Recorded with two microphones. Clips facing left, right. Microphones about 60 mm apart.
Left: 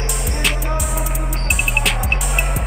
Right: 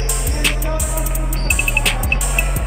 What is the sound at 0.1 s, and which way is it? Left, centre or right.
Music, centre.